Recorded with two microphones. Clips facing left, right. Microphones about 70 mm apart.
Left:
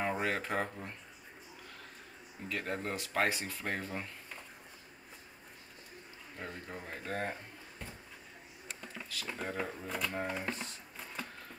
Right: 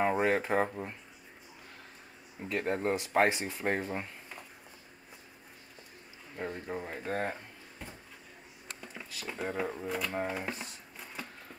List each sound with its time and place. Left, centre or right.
0.0 s speech: centre
2.4 s speech: right
6.3 s speech: centre
8.8 s a sound: centre
9.3 s speech: centre